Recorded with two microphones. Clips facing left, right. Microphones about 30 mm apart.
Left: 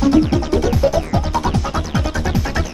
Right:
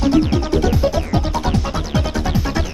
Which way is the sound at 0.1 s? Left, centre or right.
Centre.